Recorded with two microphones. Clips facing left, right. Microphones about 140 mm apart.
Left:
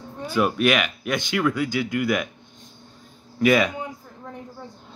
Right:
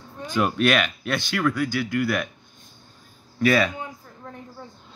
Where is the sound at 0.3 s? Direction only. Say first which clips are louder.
Left 1 dB; 10° left (ahead or behind).